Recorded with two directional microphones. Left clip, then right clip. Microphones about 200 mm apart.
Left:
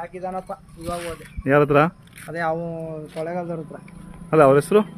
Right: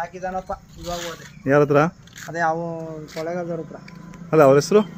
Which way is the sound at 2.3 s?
45° left (ahead or behind).